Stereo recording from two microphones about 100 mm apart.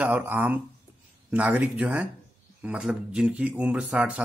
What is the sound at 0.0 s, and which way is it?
Speech, 20° right (ahead or behind).